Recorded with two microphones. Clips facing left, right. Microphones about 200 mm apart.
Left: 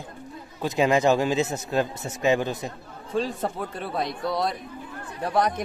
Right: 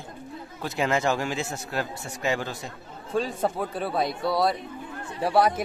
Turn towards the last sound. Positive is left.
turn(degrees=-5)  # may be behind; listen again after turning